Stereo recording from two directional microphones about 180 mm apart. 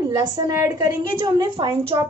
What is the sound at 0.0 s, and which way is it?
A woman's voice, 20° right (ahead or behind).